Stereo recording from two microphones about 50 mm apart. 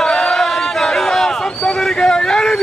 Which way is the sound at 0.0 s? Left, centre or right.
Centre.